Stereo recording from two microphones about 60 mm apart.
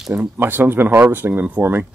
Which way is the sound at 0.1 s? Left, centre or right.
Right.